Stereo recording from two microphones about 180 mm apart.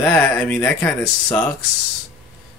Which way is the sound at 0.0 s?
15° left (ahead or behind).